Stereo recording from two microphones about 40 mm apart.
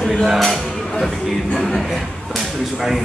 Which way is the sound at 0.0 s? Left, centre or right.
Centre.